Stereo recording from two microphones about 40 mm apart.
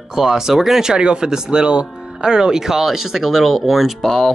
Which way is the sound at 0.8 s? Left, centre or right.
Right.